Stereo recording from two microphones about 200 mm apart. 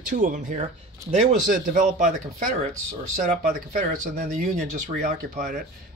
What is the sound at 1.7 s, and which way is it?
Speech, 40° right (ahead or behind).